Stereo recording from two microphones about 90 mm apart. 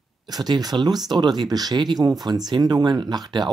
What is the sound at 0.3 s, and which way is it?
Speech, 50° right (ahead or behind).